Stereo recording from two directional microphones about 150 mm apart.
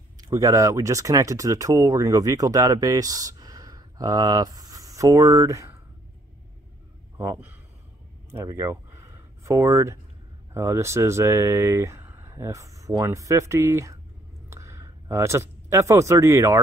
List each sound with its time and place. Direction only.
0.2 s speech: 20° right (ahead or behind)
7.2 s speech: 20° right (ahead or behind)
8.3 s a sound: 20° right (ahead or behind)
10.5 s speech: 20° right (ahead or behind)
14.5 s a sound: 20° right (ahead or behind)
15.7 s speech: 20° right (ahead or behind)